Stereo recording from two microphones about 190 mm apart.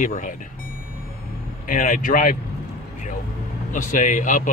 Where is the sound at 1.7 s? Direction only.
45° left (ahead or behind).